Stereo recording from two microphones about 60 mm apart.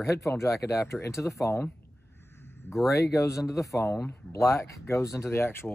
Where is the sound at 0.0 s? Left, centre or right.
Left.